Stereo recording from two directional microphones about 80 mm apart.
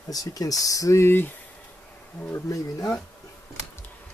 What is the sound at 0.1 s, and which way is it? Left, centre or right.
Speech, left.